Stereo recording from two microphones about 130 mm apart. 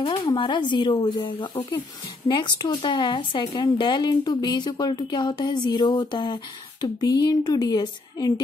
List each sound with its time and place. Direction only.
0.4 s speech: 35° left (ahead or behind)